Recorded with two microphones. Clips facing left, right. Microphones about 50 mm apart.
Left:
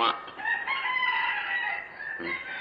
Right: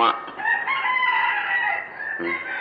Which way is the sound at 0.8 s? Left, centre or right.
Centre.